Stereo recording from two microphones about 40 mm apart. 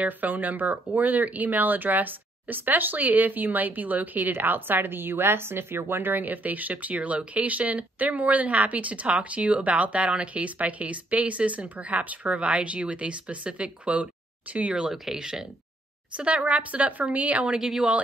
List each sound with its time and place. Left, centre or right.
0.0 s a woman's voice: right
14.8 s speech: centre
15.1 s a woman's voice: centre
16.2 s speech: right
16.5 s a woman's voice: right
17.5 s a woman's voice: centre